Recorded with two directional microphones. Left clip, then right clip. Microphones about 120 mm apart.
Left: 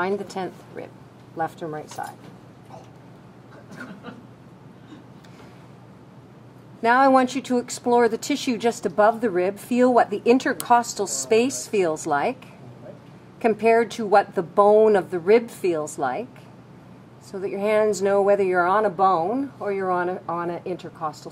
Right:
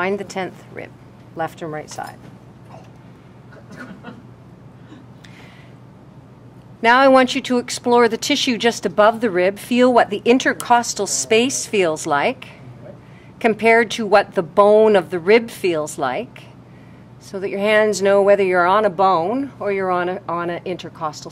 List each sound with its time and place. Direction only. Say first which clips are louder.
0.0 s speech: right 4 dB; 5° right (ahead or behind)
6.8 s speech: right 5 dB; 15° right (ahead or behind)
17.4 s speech: right 5 dB; 15° right (ahead or behind)